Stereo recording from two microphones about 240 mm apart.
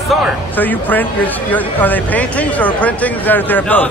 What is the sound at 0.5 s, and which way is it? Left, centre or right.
Speech, centre.